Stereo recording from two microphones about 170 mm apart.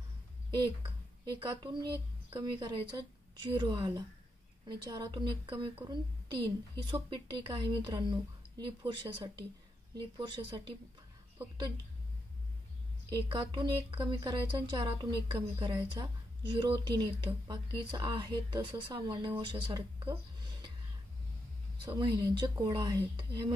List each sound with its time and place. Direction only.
0.5 s a woman's voice: 30° right (ahead or behind)
13.1 s a woman's voice: 25° right (ahead or behind)
21.8 s a woman's voice: 25° right (ahead or behind)